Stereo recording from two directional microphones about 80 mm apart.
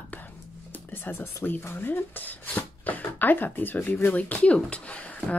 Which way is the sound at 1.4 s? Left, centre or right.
Left.